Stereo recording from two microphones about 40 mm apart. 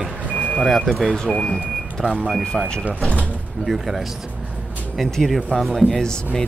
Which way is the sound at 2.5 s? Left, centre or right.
Left.